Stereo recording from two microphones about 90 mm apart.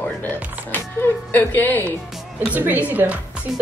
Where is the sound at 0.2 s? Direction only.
20° left (ahead or behind).